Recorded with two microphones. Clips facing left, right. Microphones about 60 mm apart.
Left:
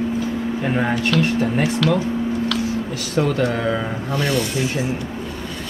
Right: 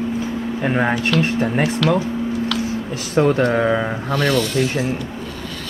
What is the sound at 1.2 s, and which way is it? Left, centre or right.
Speech, right.